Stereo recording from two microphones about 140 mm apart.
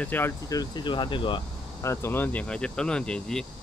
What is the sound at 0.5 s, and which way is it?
Speech, 30° left (ahead or behind).